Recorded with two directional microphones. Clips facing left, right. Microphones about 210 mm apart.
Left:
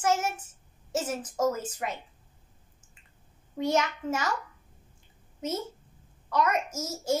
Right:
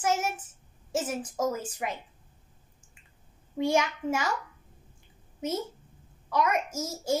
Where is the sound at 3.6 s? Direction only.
10° right (ahead or behind).